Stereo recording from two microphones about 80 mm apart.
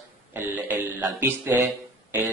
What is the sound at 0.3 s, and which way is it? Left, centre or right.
Speech, right.